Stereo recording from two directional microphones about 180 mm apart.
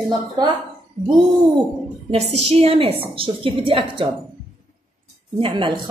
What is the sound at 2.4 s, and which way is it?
A woman's voice, 35° right (ahead or behind).